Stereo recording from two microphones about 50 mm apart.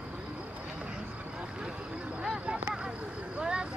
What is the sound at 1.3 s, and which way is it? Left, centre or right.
Vehicle, centre.